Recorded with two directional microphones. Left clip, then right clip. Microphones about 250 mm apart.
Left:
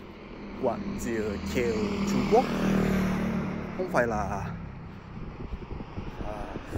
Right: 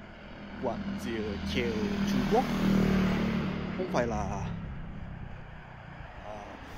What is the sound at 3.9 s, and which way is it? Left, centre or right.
Speech, centre.